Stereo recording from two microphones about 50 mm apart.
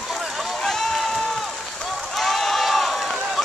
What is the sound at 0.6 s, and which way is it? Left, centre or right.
Run, centre.